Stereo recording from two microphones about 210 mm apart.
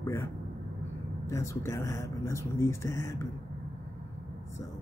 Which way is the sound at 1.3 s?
15° left (ahead or behind).